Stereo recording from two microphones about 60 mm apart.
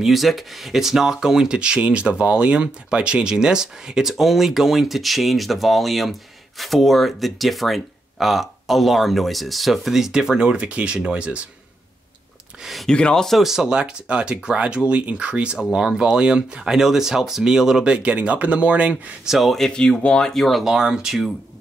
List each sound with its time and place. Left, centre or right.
0.0 s speech: centre
12.8 s speech: centre
13.3 s speech: centre; by 18.9 s right
19.2 s speech: centre
19.8 s speech: centre
20.6 s speech: centre